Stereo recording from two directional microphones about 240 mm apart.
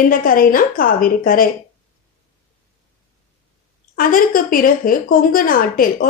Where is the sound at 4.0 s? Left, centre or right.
Left.